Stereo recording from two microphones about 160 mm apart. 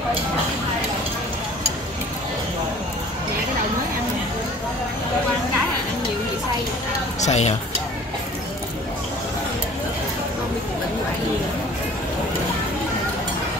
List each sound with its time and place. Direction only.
7.2 s speech: 45° left (ahead or behind)